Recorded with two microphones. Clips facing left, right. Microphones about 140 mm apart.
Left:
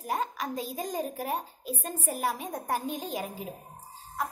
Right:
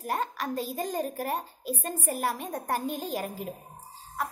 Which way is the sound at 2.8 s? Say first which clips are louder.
Right 2 dB; 10° right (ahead or behind).